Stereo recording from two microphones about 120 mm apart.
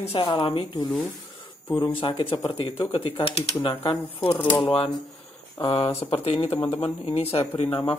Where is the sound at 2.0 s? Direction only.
45° left (ahead or behind).